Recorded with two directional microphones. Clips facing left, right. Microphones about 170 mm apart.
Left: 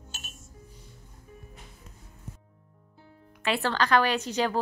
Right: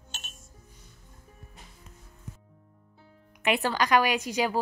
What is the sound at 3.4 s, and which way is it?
A woman's voice, 15° right (ahead or behind).